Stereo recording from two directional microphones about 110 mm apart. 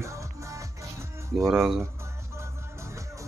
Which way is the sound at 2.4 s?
25° right (ahead or behind).